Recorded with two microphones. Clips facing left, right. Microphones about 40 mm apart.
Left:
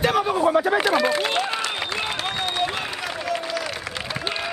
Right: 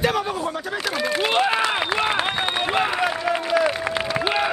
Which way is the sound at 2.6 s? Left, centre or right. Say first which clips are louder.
Right 5 dB; right.